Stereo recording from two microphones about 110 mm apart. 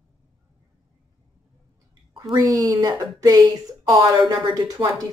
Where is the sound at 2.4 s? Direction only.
30° right (ahead or behind).